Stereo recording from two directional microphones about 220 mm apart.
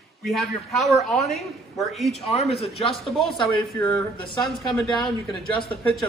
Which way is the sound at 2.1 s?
30° left (ahead or behind).